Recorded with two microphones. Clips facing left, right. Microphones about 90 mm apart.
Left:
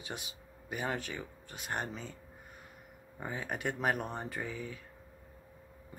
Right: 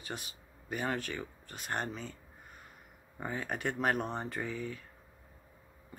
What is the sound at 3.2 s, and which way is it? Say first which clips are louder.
Speech: right 1 dB; 10° left (ahead or behind).